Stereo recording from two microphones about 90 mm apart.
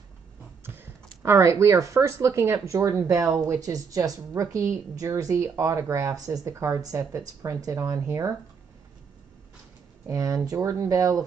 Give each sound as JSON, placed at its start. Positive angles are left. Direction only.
{"t": 1.2, "sound": "speech", "side_deg": -30}
{"t": 10.0, "sound": "speech", "side_deg": -40}